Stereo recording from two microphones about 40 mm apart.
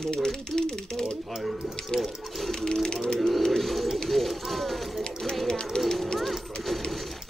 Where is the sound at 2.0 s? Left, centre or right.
Centre.